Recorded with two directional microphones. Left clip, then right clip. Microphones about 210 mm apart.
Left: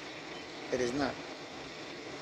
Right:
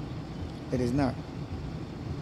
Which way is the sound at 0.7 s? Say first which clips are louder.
Right 3 dB; centre (ahead or behind).